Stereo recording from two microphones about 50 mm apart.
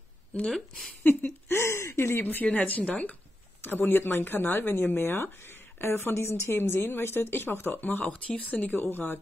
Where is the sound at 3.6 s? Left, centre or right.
Left.